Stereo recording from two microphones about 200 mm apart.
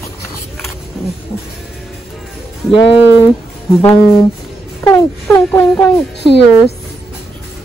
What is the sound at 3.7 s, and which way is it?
Speech, 20° left (ahead or behind).